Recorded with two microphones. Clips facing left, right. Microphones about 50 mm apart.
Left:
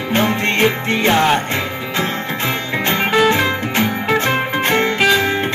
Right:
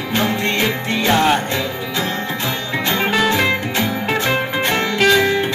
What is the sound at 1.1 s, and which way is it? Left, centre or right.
Music, left.